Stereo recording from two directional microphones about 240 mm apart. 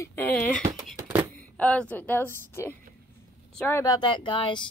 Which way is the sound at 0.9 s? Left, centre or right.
Centre.